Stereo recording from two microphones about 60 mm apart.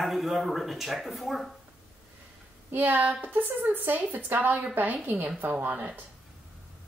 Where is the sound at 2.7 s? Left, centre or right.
Right.